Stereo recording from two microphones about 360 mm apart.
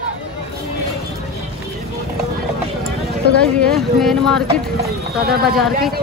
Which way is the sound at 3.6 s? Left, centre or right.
Centre.